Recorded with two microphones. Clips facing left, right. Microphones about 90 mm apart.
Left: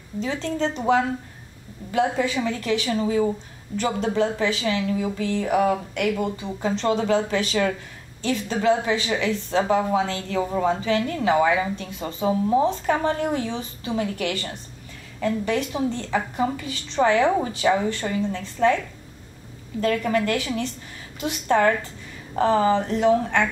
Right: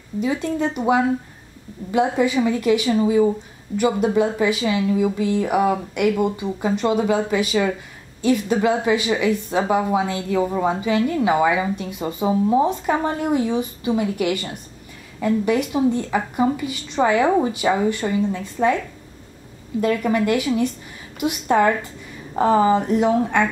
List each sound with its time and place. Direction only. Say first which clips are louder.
0.2 s a woman's voice: right 3 dB; 10° right (ahead or behind)
19.8 s a woman's voice: right 2 dB; 15° right (ahead or behind)